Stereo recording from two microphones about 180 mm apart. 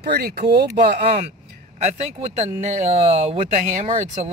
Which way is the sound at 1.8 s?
35° right (ahead or behind).